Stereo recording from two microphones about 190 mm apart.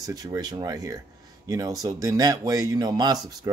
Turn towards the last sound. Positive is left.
turn(degrees=-20)  # may be behind; listen again after turning